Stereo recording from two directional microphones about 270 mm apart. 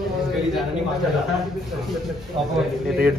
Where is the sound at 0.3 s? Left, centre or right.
Centre.